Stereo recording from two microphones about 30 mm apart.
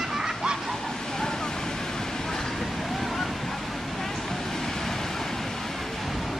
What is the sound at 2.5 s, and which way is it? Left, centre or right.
Boat, centre.